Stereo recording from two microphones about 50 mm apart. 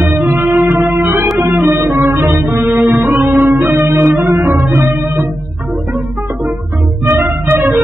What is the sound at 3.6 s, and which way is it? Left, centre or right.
Organ, right.